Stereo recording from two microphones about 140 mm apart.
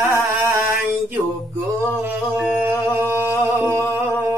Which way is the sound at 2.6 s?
15° right (ahead or behind).